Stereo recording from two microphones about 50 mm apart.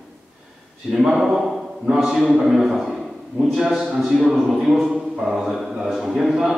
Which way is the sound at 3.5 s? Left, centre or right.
Centre.